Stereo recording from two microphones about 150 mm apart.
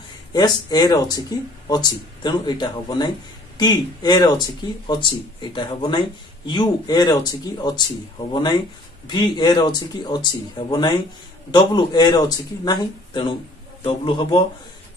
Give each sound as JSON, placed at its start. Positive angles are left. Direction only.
{"t": 0.3, "sound": "speech", "side_deg": 25}
{"t": 11.5, "sound": "speech", "side_deg": 30}